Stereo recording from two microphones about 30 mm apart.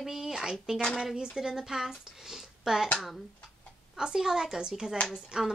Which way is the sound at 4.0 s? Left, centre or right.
Centre.